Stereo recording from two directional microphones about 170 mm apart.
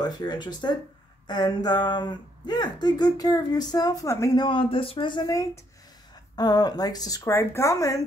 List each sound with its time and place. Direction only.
0.0 s speech: 25° left (ahead or behind)
4.5 s speech: 30° left (ahead or behind)